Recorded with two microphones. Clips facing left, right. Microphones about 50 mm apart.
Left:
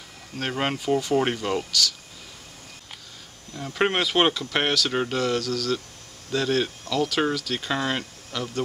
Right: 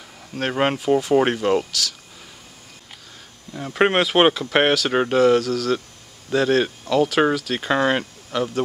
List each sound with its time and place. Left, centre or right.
0.4 s speech: centre
3.5 s speech: centre